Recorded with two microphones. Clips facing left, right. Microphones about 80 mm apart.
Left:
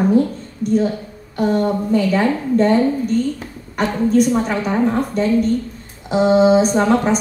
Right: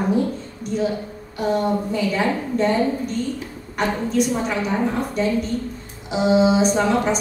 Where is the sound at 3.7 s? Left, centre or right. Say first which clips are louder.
Left 5 dB; left.